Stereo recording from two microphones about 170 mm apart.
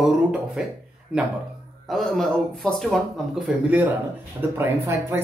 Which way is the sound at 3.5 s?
10° right (ahead or behind).